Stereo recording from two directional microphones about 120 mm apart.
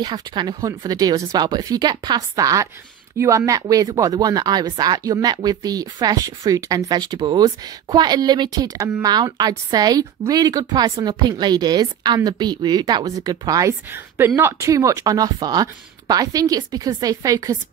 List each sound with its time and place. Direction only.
0.0 s a woman's voice: 40° right (ahead or behind)